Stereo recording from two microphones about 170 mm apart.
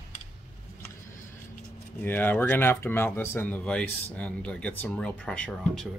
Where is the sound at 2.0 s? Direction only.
10° left (ahead or behind).